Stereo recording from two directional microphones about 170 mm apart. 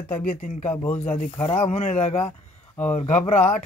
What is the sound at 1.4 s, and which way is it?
Speech, 40° left (ahead or behind).